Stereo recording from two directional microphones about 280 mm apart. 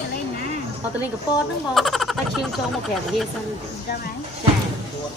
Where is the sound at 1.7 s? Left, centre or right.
Centre.